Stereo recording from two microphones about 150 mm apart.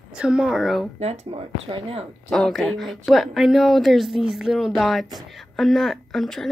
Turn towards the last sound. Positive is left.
turn(degrees=0)  # may be behind; listen again after turning